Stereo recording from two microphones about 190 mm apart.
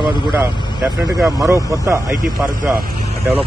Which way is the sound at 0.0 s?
25° left (ahead or behind).